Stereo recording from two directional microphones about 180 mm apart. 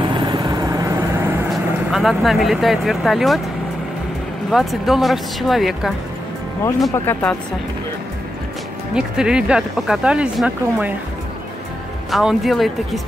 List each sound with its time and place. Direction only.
0.0 s vehicle: 25° right (ahead or behind)
1.5 s speech: centre (ahead or behind)
4.5 s speech: centre (ahead or behind)
6.9 s speech: 10° left (ahead or behind)
8.9 s speech: 5° right (ahead or behind)
12.1 s speech: centre (ahead or behind)